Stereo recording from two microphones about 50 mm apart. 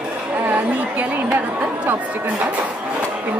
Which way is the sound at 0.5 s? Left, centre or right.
Right.